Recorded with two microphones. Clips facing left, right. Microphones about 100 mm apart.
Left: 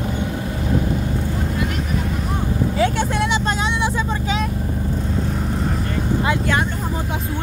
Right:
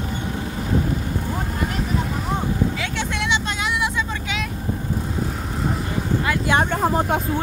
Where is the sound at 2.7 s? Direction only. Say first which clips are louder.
Left 7 dB; 40° left (ahead or behind).